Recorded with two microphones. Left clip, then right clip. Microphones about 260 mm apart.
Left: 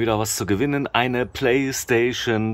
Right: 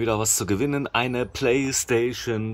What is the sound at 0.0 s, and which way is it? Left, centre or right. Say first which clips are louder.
Speech: left 2 dB; centre.